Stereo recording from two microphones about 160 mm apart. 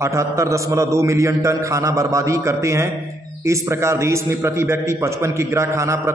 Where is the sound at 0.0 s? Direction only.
20° right (ahead or behind).